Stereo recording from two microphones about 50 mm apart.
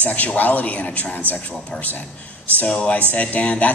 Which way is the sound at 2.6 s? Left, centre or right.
Left.